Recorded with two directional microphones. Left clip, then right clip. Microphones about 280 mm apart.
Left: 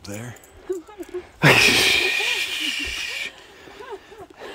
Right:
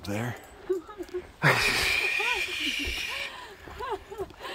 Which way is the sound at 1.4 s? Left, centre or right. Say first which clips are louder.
Left 9 dB; left.